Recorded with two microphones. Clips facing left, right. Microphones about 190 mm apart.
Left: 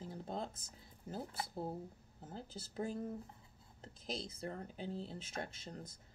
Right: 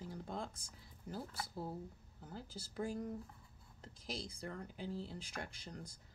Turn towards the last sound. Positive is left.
turn(degrees=25)  # may be behind; listen again after turning